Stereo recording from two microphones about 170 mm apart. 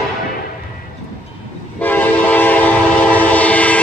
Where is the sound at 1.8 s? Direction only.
10° left (ahead or behind).